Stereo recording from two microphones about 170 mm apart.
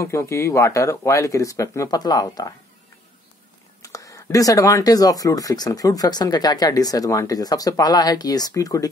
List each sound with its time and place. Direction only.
0.0 s speech: 15° left (ahead or behind)
3.8 s speech: 20° left (ahead or behind)